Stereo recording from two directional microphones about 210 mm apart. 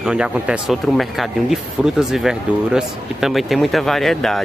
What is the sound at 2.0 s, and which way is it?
Speech, centre (ahead or behind).